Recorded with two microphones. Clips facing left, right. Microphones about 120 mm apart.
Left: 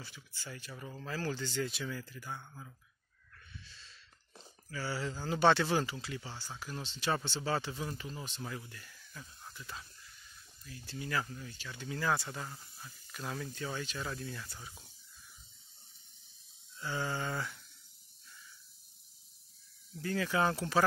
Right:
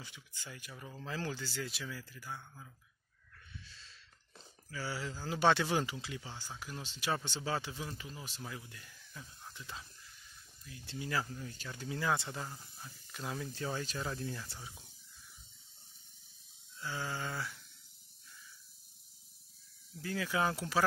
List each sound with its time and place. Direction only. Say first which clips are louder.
0.0 s speech: left 2 dB; 15° right (ahead or behind); by 2.7 s 5° left (ahead or behind)
4.6 s speech: left 3 dB; 10° right (ahead or behind)
8.6 s speech: left 1 dB; 15° right (ahead or behind)
11.5 s speech: right 1 dB; 40° right (ahead or behind)
11.9 s speech: left 1 dB; 20° right (ahead or behind)
13.6 s speech: right 1 dB; 30° right (ahead or behind); by 14.9 s 15° right (ahead or behind)
16.8 s speech: left 3 dB; centre (ahead or behind)
20.0 s speech: left 3 dB; 5° right (ahead or behind)